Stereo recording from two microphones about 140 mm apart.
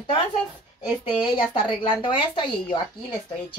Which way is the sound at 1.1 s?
35° left (ahead or behind).